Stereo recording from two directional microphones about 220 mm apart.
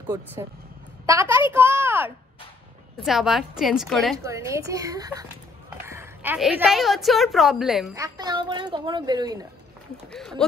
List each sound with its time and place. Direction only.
0.1 s a woman's voice: 10° right (ahead or behind)
4.2 s a woman's voice: 15° right (ahead or behind)
7.9 s speech: 15° right (ahead or behind)